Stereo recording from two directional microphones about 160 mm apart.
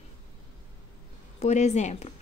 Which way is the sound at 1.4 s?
45° left (ahead or behind).